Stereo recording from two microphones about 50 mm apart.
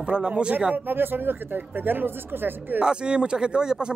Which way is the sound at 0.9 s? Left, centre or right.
Right.